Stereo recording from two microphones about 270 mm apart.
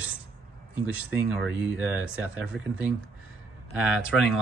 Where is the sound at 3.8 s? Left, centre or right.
Centre.